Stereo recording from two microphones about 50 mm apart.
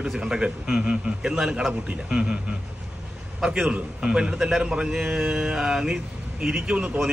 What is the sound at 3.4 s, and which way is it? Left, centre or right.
A man's voice, centre.